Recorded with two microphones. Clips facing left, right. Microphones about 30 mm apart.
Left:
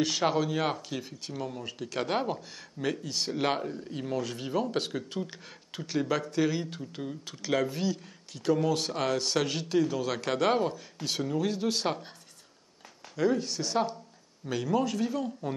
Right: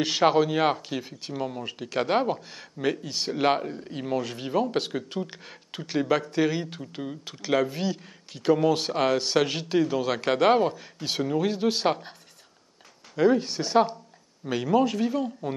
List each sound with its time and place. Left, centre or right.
0.0 s speech: right
13.1 s speech: right